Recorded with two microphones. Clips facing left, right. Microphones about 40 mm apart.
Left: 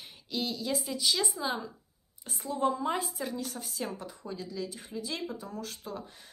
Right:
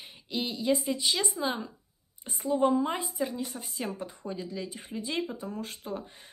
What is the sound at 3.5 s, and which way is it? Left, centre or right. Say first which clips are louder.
Speech: right 1 dB; right.